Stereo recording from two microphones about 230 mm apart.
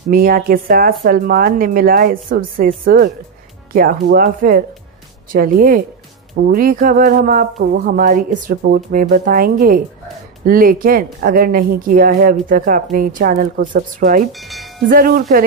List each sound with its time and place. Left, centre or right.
0.1 s speech: right
14.3 s speech: centre
14.9 s speech: right